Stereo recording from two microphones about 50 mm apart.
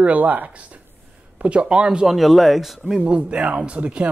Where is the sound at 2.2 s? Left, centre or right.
Centre.